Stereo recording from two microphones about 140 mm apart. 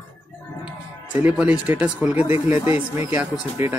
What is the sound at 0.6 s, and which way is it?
Speech, 10° right (ahead or behind).